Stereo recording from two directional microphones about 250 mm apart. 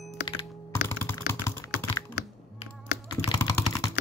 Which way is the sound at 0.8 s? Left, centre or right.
Centre.